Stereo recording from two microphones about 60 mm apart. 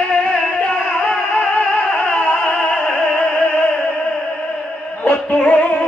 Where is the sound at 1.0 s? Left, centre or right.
Centre.